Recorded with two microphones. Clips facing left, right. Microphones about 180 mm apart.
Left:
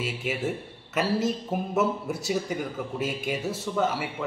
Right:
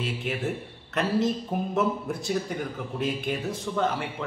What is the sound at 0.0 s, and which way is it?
Speech, 5° left (ahead or behind).